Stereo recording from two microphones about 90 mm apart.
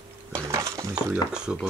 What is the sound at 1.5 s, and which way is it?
Speech, 10° right (ahead or behind).